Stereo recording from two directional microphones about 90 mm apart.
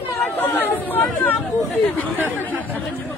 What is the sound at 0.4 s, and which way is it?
Chatter, 20° left (ahead or behind).